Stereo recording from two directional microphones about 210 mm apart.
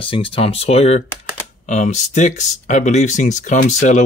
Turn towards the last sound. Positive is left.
turn(degrees=35)  # may be behind; listen again after turning